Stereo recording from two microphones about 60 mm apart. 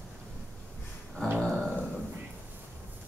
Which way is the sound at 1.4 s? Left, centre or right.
Centre.